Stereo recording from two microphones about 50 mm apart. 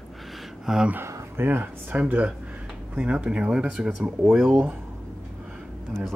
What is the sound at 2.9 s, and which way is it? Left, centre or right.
Speech, right.